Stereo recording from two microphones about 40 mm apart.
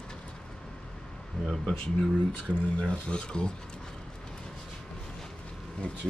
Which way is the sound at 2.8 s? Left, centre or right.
Left.